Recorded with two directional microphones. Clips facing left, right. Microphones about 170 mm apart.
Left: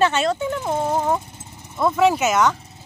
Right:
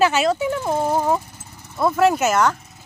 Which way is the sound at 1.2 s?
20° left (ahead or behind).